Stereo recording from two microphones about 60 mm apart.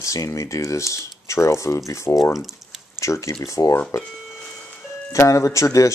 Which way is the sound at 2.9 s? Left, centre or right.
Left.